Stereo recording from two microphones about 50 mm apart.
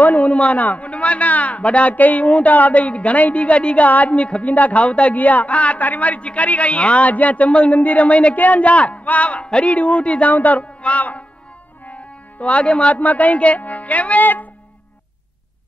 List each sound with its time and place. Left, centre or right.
0.0 s a man's voice: left